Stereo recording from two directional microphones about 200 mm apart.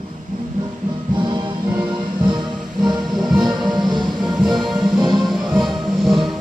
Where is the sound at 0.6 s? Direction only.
20° right (ahead or behind).